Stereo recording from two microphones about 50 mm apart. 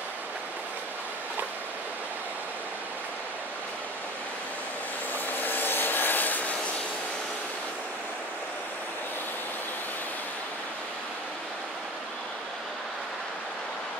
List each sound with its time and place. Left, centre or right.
5.4 s rub: left